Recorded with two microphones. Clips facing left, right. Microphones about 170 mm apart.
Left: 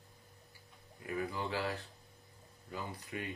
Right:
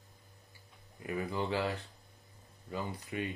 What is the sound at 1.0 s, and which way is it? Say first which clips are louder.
Speech: right 3 dB; 25° right (ahead or behind).